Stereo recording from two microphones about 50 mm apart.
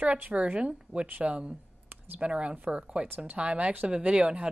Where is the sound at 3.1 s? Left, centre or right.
Right.